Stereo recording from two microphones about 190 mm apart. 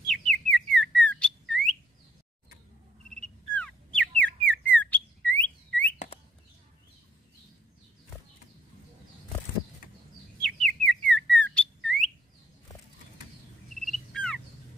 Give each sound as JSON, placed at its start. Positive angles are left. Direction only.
{"t": 0.0, "sound": "bird", "side_deg": 5}
{"t": 3.2, "sound": "bird", "side_deg": 5}
{"t": 10.4, "sound": "bird", "side_deg": 5}
{"t": 13.8, "sound": "bird", "side_deg": 5}